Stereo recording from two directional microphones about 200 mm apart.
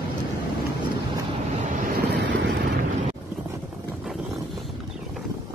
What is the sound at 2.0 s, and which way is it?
Vehicle, 60° right (ahead or behind).